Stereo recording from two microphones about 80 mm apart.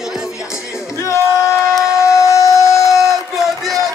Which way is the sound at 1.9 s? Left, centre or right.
Left.